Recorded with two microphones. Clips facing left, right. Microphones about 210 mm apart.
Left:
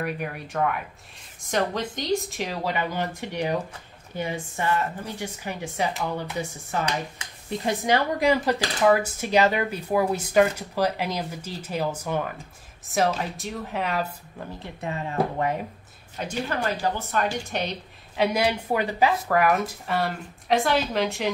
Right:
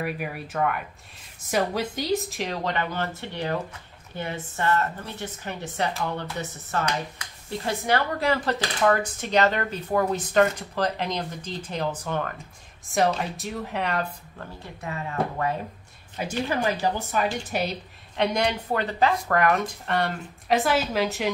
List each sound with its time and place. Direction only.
0.0 s a woman's voice: 5° right (ahead or behind)
14.4 s speech: 25° left (ahead or behind)
16.2 s a woman's voice: 10° right (ahead or behind)